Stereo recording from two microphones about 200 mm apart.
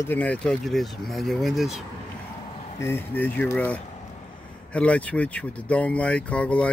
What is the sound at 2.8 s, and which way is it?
Speech, 10° left (ahead or behind).